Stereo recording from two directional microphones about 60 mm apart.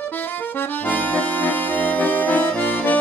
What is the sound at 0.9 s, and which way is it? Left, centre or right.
Accordion, left.